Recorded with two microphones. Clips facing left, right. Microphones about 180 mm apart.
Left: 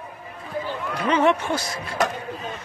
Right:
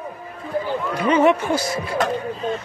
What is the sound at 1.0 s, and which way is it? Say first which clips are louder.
Speech: right 3 dB; 5° right (ahead or behind).